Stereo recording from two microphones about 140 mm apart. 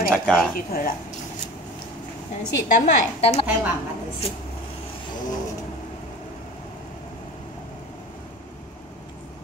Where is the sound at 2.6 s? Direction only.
55° left (ahead or behind).